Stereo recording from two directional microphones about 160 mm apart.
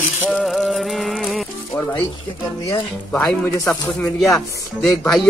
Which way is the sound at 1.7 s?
15° left (ahead or behind).